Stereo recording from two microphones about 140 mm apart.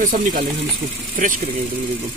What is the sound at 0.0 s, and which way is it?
Speech, 80° right.